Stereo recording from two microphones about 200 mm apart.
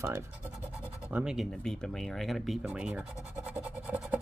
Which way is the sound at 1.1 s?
Centre (ahead or behind).